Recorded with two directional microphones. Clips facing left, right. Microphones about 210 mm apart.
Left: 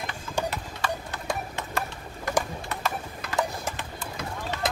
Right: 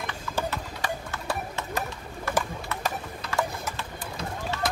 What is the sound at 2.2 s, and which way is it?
Pigeon, 15° left (ahead or behind).